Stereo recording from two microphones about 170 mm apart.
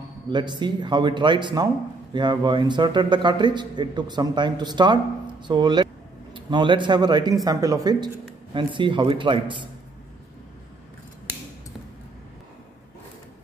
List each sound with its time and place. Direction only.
0.3 s a man's voice: 25° right (ahead or behind)